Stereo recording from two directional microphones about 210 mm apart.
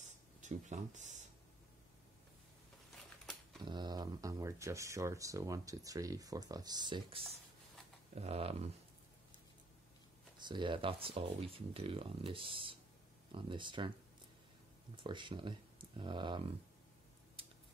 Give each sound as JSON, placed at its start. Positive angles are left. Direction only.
{"t": 0.0, "sound": "a sound", "side_deg": -35}
{"t": 3.6, "sound": "speech", "side_deg": -20}
{"t": 10.3, "sound": "speech", "side_deg": -20}
{"t": 15.0, "sound": "speech", "side_deg": -20}